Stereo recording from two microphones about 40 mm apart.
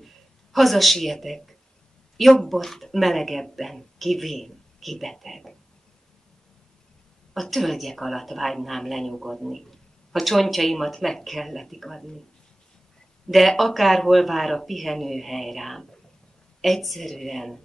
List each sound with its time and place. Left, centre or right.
0.0 s speech: centre
7.3 s speech: centre
13.3 s speech: centre